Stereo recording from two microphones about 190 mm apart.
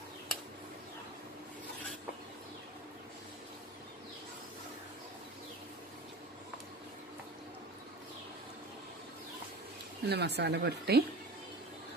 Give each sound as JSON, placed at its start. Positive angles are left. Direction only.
{"t": 10.0, "sound": "a woman's voice", "side_deg": -60}